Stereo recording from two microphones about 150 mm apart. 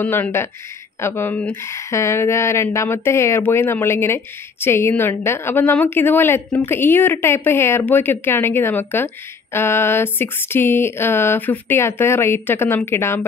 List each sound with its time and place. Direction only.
0.0 s a woman's voice: 15° left (ahead or behind)